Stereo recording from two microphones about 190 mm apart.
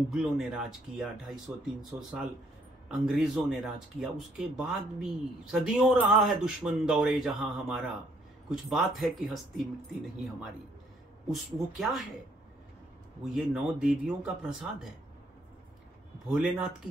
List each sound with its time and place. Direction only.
0.1 s speech: 5° right (ahead or behind)
2.9 s speech: centre (ahead or behind)
11.5 s speech: centre (ahead or behind)
13.2 s speech: centre (ahead or behind)
16.3 s speech: centre (ahead or behind)